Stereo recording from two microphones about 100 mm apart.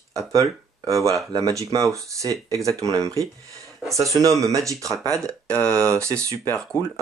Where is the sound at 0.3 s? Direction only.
35° right (ahead or behind).